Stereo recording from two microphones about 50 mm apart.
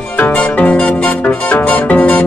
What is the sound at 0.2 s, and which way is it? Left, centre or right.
Music, left.